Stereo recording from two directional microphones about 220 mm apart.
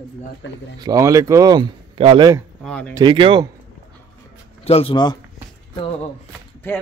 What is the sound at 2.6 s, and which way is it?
Speech, 5° left (ahead or behind).